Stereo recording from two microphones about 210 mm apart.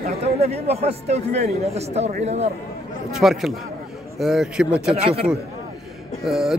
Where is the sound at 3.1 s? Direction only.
Centre (ahead or behind).